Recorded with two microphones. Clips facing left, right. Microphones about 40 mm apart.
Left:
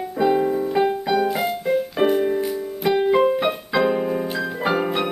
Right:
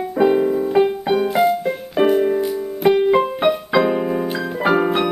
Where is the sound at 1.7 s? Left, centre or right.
Centre.